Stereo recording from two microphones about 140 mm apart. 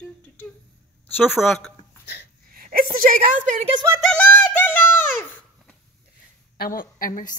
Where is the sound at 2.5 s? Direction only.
90° right.